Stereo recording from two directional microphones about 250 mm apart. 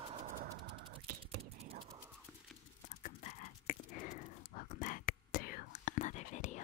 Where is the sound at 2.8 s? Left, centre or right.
Left.